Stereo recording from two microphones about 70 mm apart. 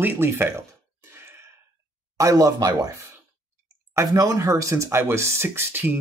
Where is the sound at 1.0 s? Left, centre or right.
Right.